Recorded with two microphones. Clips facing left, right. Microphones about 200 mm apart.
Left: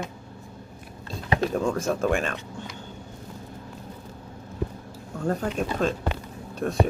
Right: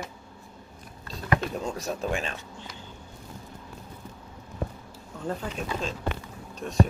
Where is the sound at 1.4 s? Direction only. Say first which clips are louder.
Left 7 dB; 50° left (ahead or behind).